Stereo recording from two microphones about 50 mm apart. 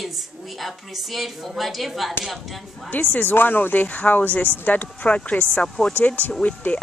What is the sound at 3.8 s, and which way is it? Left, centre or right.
Speech, left.